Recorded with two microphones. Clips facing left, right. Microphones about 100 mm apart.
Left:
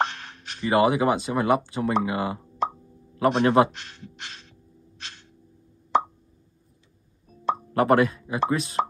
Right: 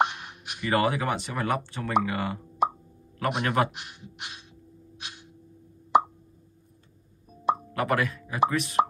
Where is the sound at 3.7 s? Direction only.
10° right (ahead or behind).